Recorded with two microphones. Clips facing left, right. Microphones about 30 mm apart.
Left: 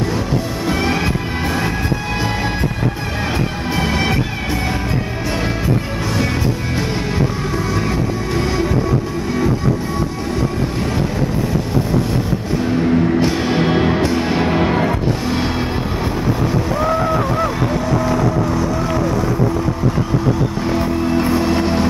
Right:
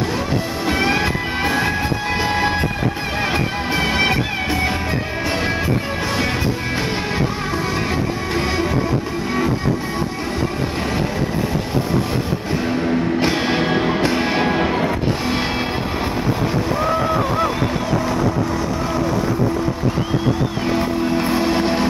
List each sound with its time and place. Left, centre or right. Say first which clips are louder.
0.7 s music: right 1 dB; centre
3.7 s music: right 1 dB; centre
8.4 s music: left 1 dB; centre
12.6 s music: left 4 dB; centre
13.2 s music: left 1 dB; centre
13.6 s music: left 3 dB; centre
14.0 s music: left 1 dB; centre
14.5 s music: left 2 dB; centre
15.2 s music: left 1 dB; centre
20.6 s music: even; centre